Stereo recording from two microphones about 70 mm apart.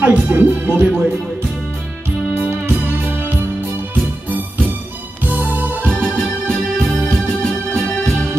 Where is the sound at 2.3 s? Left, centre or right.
Right.